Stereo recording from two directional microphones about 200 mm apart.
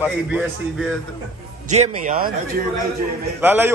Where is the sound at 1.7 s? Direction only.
40° right (ahead or behind).